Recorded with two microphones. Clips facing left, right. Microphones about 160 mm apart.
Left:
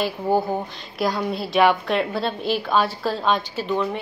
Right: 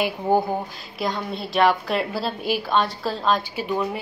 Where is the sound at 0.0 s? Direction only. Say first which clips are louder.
Right 1 dB; 15° right (ahead or behind).